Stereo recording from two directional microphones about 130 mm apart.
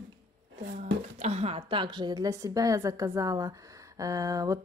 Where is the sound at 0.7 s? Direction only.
55° right (ahead or behind).